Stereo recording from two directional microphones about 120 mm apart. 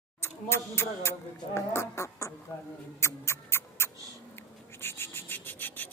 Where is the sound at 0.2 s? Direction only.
20° left (ahead or behind).